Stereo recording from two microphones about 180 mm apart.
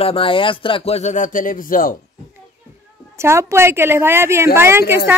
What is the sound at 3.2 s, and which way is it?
A woman's voice, 15° right (ahead or behind).